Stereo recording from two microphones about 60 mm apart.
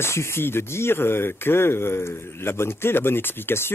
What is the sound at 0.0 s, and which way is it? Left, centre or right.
Speech, left.